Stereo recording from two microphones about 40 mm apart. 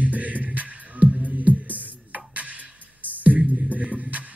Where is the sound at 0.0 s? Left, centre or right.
Right.